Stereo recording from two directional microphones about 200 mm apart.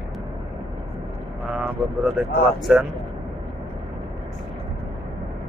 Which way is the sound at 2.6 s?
Centre (ahead or behind).